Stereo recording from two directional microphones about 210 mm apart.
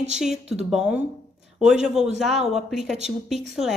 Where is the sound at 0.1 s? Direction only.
Centre (ahead or behind).